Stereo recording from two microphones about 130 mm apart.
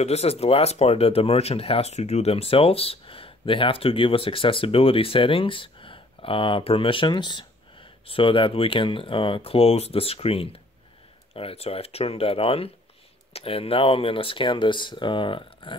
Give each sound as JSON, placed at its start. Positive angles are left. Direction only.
{"t": 0.0, "sound": "speech", "side_deg": 55}